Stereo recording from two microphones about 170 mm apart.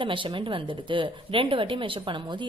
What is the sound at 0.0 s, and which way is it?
A woman's voice, 30° right (ahead or behind).